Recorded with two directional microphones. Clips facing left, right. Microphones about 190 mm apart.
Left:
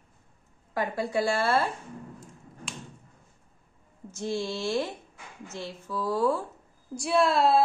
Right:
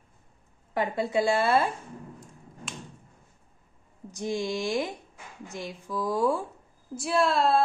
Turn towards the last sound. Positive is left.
turn(degrees=0)  # may be behind; listen again after turning